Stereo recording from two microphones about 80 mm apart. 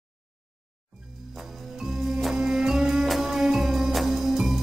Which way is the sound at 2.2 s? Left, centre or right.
Centre.